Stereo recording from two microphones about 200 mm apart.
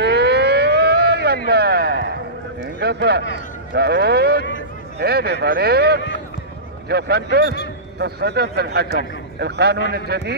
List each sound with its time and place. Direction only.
0.0 s civil defense siren: 55° right (ahead or behind)
1.5 s a sound: 55° right (ahead or behind)
2.6 s a man's voice: 55° right (ahead or behind)